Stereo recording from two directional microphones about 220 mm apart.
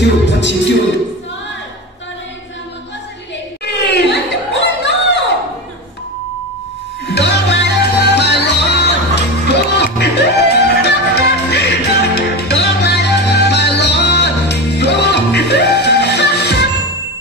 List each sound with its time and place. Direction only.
0.3 s music: 55° left (ahead or behind)
3.7 s a sound: 50° left (ahead or behind)
7.1 s music: 50° left (ahead or behind)